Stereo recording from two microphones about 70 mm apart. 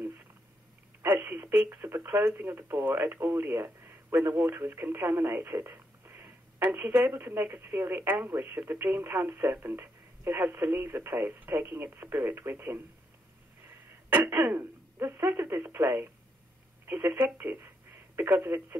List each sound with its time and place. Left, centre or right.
1.0 s telephone: right
1.7 s radio: right
2.3 s speech: right